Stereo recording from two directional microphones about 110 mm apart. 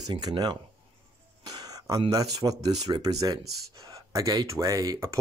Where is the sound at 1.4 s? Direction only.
35° right (ahead or behind).